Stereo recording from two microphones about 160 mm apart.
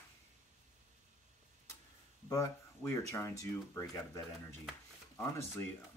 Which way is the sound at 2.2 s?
15° left (ahead or behind).